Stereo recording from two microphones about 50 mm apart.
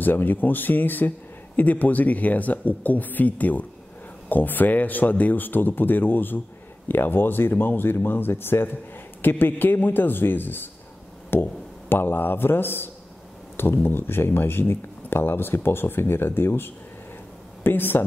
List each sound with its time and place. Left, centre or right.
0.0 s speech: left